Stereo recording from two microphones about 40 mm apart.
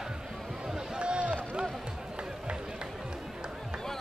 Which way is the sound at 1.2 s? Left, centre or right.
Right.